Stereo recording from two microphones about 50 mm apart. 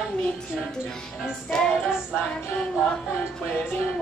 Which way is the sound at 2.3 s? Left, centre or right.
Left.